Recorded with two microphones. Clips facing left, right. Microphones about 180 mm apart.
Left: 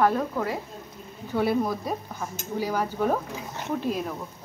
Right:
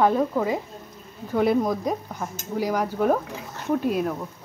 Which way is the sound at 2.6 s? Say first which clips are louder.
Right 3 dB; 10° right (ahead or behind).